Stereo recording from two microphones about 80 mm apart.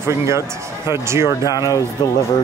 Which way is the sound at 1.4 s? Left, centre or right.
Left.